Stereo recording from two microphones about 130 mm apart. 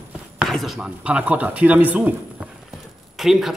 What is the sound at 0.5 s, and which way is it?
Speech, centre (ahead or behind).